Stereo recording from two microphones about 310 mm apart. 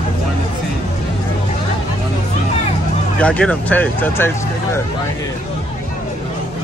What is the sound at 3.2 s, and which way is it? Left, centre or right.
Speech, centre.